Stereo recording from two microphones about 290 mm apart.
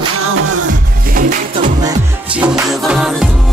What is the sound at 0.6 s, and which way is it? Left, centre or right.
Music, right.